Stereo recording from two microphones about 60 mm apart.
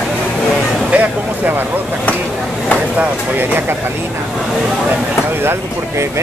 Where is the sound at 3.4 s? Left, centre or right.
Right.